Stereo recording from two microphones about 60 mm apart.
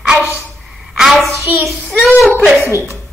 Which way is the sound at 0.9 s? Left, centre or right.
Centre.